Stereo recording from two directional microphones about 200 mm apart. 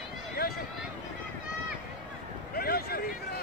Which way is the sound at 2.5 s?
50° left (ahead or behind).